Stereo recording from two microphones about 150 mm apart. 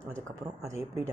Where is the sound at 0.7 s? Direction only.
20° right (ahead or behind).